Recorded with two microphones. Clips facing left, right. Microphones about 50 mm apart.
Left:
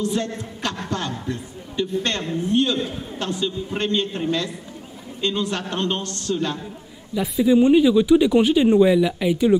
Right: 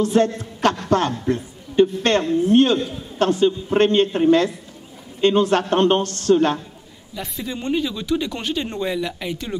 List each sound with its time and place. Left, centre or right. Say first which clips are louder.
0.0 s a man's voice: right 6 dB; right
7.2 s speech: left 13 dB; centre